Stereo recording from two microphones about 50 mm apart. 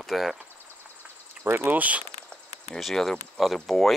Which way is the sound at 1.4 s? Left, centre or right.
Right.